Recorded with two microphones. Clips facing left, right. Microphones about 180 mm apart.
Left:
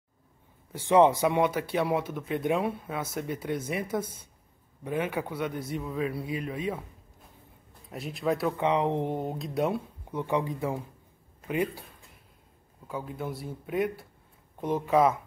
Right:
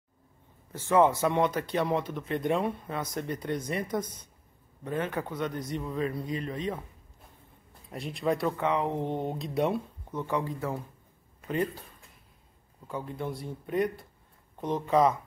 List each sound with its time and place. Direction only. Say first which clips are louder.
0.7 s speech: left 2 dB; 15° left (ahead or behind)
7.9 s speech: even; centre (ahead or behind)
8.5 s speech: left 2 dB; 20° left (ahead or behind)
9.1 s speech: even; centre (ahead or behind)
10.0 s speech: left 3 dB; 15° left (ahead or behind)
12.8 s speech: even; 5° left (ahead or behind)